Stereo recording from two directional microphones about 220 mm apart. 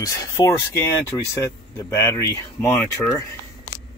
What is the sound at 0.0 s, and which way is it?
Speech, 15° left (ahead or behind).